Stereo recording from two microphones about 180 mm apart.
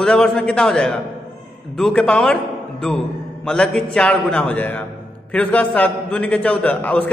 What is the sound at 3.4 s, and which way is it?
A man's voice, 5° left (ahead or behind).